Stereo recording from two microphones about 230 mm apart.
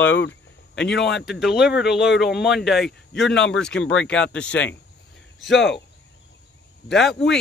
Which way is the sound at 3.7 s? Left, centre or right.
Left.